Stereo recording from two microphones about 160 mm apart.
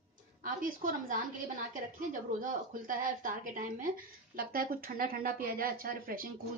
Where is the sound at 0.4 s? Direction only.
55° right (ahead or behind).